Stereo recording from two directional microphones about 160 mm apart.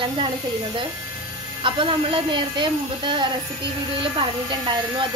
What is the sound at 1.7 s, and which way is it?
A woman's voice, 35° right (ahead or behind).